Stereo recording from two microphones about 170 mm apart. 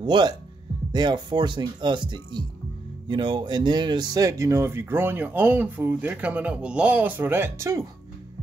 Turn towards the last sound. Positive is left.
turn(degrees=-15)  # may be behind; listen again after turning